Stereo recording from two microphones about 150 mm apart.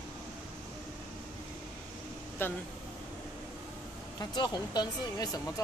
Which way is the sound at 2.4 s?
15° left (ahead or behind).